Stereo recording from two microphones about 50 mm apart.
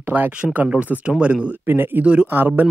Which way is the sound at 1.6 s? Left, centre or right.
Right.